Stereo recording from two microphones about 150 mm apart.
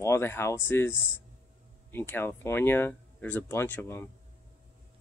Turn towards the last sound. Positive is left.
turn(degrees=15)  # may be behind; listen again after turning